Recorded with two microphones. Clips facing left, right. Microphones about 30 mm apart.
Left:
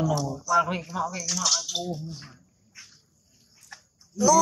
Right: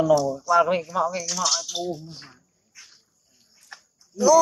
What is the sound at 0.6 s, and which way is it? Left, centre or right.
Speech, right.